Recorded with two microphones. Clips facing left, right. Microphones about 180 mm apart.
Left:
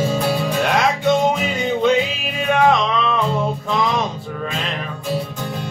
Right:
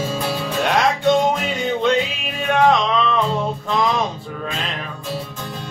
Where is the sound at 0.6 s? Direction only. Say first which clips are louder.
Right 3 dB; centre (ahead or behind).